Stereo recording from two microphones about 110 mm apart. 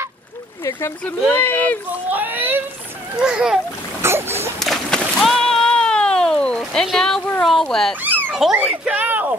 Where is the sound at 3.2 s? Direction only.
10° right (ahead or behind).